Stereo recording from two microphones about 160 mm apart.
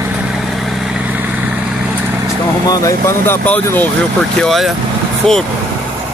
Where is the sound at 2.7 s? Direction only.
20° left (ahead or behind); by 5.4 s centre (ahead or behind).